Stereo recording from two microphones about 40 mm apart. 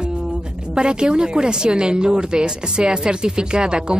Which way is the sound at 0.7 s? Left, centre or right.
Right.